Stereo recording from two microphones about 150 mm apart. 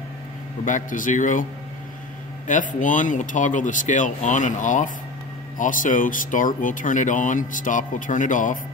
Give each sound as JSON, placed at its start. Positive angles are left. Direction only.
{"t": 0.7, "sound": "speech", "side_deg": 60}
{"t": 2.4, "sound": "speech", "side_deg": 60}